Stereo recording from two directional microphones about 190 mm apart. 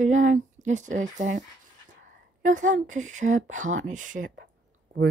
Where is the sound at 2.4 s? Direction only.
40° right (ahead or behind).